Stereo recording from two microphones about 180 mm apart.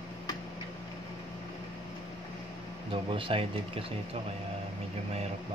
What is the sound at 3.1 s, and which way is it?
Speech, 30° right (ahead or behind).